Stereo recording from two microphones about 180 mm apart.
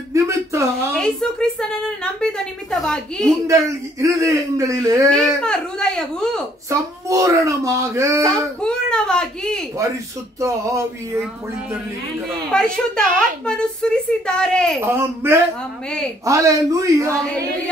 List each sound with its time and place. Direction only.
0.1 s a sound: 15° right (ahead or behind)
0.9 s a woman's voice: 5° left (ahead or behind)
3.4 s speech: 15° right (ahead or behind)
5.1 s a woman's voice: 5° left (ahead or behind)
6.7 s speech: 15° right (ahead or behind)
8.2 s a woman's voice: 5° left (ahead or behind)
10.4 s speech: 15° right (ahead or behind)
12.4 s a woman's voice: 5° left (ahead or behind)
14.8 s speech: 15° right (ahead or behind)